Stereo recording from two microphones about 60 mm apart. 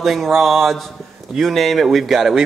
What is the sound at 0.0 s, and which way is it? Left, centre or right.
Speech, centre.